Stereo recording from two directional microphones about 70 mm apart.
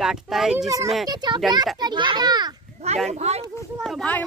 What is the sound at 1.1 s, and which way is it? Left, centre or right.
A child's voice, right.